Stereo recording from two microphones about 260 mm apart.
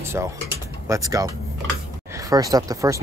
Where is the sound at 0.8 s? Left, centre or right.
Centre.